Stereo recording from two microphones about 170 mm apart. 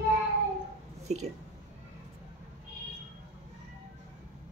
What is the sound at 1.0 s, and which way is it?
Speech, 40° right (ahead or behind).